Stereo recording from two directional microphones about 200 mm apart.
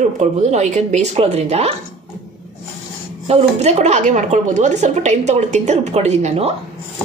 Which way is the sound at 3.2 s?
35° right (ahead or behind).